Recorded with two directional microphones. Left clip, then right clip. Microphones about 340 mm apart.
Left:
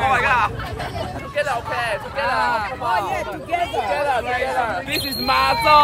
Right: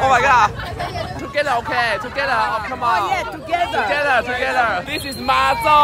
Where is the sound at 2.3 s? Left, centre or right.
Left.